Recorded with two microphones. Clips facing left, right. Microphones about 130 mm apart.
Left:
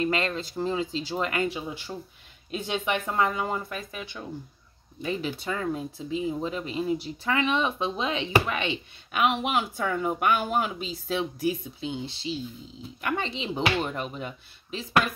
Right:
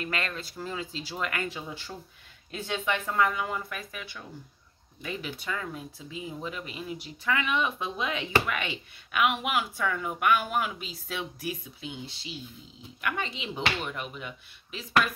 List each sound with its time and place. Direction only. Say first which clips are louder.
0.0 s speech: left 7 dB; 25° left (ahead or behind)